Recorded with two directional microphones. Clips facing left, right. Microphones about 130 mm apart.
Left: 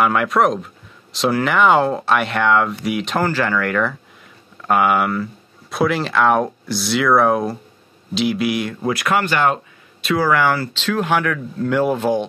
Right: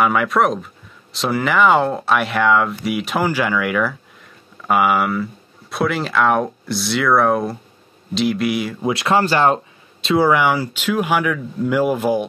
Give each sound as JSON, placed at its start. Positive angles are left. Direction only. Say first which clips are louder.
{"t": 0.0, "sound": "speech", "louder": "even", "side_deg": 0}
{"t": 8.8, "sound": "speech", "louder": "right 3 dB", "side_deg": -25}